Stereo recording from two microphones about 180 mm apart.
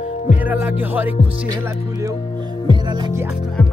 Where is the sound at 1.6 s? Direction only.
15° right (ahead or behind).